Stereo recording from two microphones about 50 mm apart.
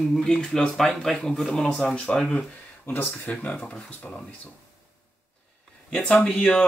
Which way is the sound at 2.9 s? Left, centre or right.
Left.